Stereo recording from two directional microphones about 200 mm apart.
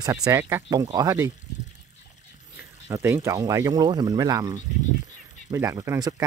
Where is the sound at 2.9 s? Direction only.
15° right (ahead or behind).